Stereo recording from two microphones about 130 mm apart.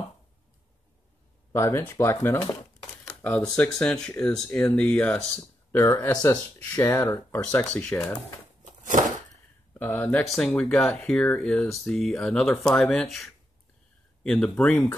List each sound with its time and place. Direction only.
1.5 s speech: 20° left (ahead or behind)
5.8 s speech: 25° left (ahead or behind)
7.6 s speech: 5° left (ahead or behind)
7.9 s speech: 20° left (ahead or behind)
9.8 s speech: 15° left (ahead or behind)